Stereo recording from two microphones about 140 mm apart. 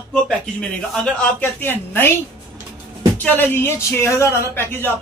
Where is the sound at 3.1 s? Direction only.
10° left (ahead or behind).